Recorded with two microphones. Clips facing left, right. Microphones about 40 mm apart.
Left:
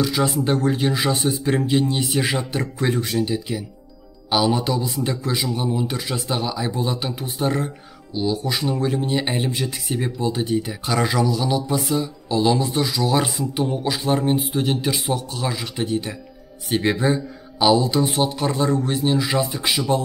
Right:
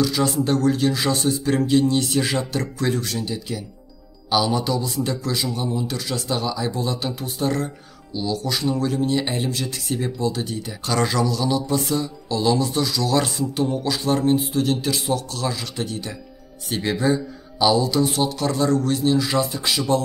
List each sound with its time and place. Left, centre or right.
0.0 s speech: left